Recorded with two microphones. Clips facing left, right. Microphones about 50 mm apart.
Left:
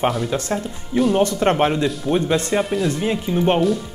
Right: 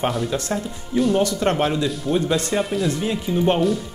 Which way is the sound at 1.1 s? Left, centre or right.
Left.